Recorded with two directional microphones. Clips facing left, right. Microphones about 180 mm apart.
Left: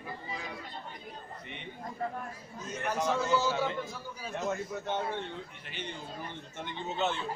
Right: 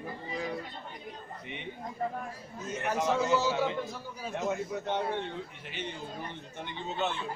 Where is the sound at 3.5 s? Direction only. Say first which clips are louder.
Right 2 dB; 5° right (ahead or behind).